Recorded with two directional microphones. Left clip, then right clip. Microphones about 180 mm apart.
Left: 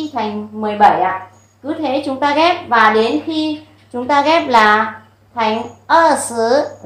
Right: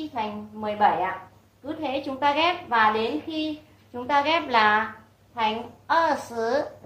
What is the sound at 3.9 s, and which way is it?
Speech, 25° left (ahead or behind).